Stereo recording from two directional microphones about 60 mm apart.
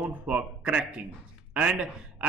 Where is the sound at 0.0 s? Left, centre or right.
Right.